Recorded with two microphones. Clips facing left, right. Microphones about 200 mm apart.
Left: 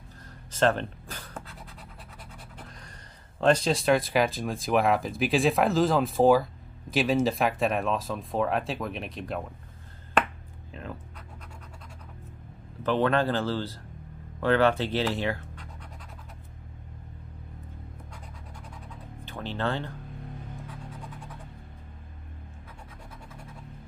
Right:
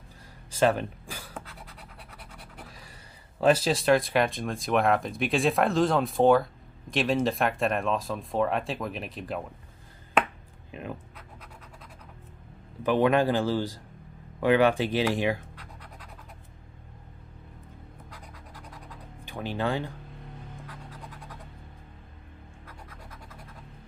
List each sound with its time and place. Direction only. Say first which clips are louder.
0.5 s scratch: right 1 dB; 10° right (ahead or behind)
2.6 s speech: even; 5° right (ahead or behind)
10.7 s speech: right 2 dB; 15° right (ahead or behind)
12.8 s speech: right 2 dB; 15° right (ahead or behind)
15.5 s scratch: left 1 dB; 5° right (ahead or behind)
19.2 s speech: right 1 dB; 15° right (ahead or behind)